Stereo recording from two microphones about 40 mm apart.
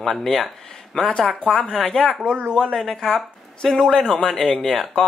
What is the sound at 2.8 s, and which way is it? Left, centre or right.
Speech, centre.